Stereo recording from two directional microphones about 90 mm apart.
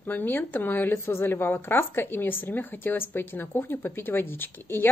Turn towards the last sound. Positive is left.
turn(degrees=25)  # may be behind; listen again after turning